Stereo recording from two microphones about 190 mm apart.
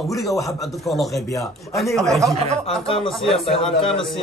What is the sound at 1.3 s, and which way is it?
Speech, 15° left (ahead or behind).